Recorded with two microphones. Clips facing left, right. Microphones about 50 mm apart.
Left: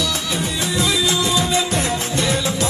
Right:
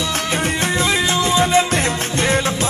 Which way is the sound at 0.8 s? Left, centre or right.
Right.